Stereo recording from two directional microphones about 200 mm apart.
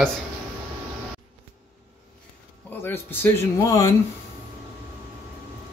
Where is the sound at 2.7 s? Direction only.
10° left (ahead or behind).